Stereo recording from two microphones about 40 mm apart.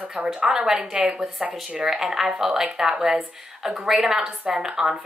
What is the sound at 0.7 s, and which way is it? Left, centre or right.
Speech, right.